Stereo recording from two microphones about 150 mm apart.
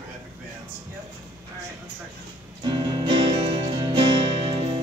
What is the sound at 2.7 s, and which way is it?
Music, 30° right (ahead or behind).